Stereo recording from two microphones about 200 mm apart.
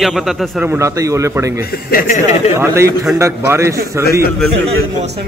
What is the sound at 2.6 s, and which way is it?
Speech, 15° right (ahead or behind).